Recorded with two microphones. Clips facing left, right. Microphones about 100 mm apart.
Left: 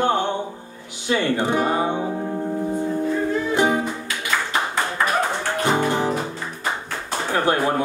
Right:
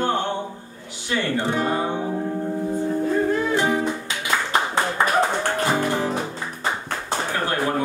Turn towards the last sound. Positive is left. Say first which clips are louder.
# left 2 dB
turn(degrees=20)  # may be behind; listen again after turning